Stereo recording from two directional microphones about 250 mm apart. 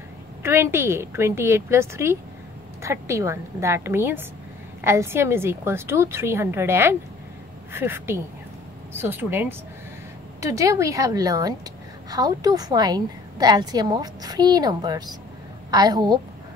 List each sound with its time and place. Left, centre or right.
0.4 s a woman's voice: centre